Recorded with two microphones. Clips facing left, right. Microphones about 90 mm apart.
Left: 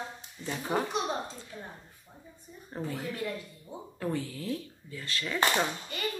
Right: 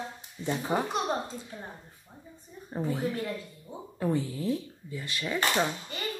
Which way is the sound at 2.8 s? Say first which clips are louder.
Right 5 dB; 10° right (ahead or behind).